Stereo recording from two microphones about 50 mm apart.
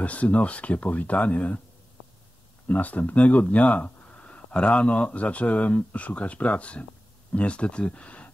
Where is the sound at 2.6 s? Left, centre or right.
Left.